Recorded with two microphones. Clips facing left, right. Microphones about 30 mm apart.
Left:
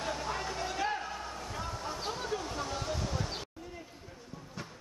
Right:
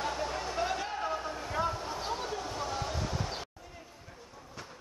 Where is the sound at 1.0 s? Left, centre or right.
Centre.